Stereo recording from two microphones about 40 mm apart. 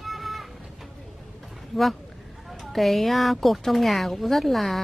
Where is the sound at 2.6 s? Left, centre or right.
Centre.